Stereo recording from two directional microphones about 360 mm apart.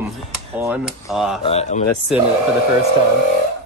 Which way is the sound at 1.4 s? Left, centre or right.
Centre.